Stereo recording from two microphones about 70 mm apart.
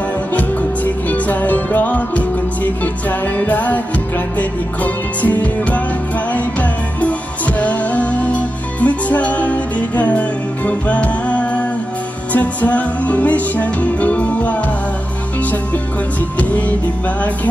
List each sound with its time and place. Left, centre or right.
0.3 s music: left
16.3 s music: left